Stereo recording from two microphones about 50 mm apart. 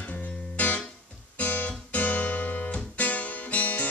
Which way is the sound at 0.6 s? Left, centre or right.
Left.